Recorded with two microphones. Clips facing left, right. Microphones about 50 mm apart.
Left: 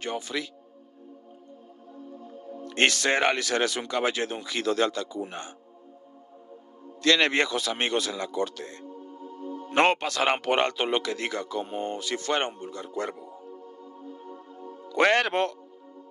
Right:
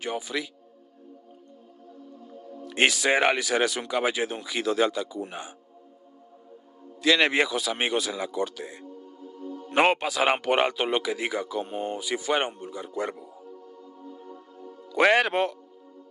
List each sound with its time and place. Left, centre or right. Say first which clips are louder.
0.0 s a man's voice: right 1 dB; centre
2.6 s a man's voice: right 1 dB; centre
7.0 s a man's voice: right 1 dB; centre
9.4 s music: left 1 dB; left
9.7 s a man's voice: even; centre
14.1 s music: left 1 dB; centre
14.9 s a man's voice: right 1 dB; centre